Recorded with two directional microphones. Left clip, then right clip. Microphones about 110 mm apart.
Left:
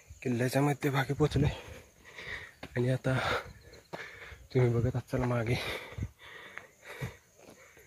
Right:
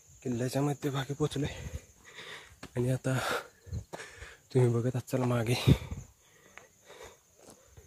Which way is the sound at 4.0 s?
40° right (ahead or behind).